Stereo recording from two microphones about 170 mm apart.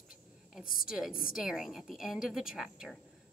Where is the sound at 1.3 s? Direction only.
5° right (ahead or behind).